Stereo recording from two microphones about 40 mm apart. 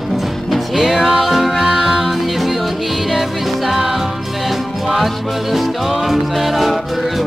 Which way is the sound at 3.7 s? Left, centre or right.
Centre.